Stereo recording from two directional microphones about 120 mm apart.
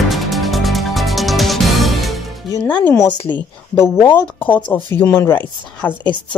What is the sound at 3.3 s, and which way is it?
Speech, 35° left (ahead or behind).